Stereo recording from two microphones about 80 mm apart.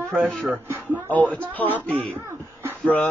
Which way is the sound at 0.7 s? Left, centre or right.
Right.